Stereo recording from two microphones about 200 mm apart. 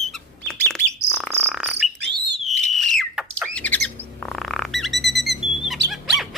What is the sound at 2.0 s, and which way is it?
Bird, 55° right (ahead or behind).